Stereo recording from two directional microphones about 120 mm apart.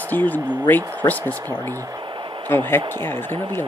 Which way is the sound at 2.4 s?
15° left (ahead or behind).